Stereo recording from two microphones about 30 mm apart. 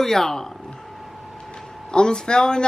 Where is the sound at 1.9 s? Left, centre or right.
Left.